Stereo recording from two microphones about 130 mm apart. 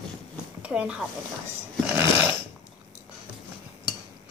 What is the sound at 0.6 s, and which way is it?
Speech, 10° right (ahead or behind).